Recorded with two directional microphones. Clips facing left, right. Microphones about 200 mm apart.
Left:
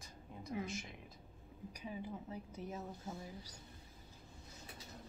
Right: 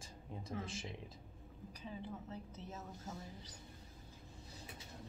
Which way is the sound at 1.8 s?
10° left (ahead or behind).